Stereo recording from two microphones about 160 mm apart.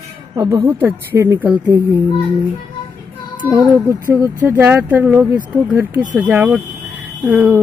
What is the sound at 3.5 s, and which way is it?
Speech, 20° right (ahead or behind).